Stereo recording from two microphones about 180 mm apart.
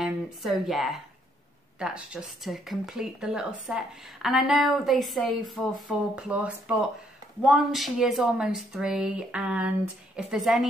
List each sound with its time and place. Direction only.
0.0 s a woman's voice: centre (ahead or behind)